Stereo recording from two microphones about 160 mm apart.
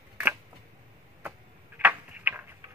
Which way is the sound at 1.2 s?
10° right (ahead or behind).